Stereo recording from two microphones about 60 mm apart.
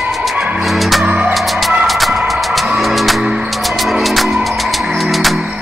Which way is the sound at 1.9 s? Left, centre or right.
Centre.